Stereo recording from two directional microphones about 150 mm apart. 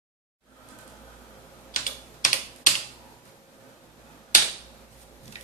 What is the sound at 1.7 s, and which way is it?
Typing, 60° left (ahead or behind).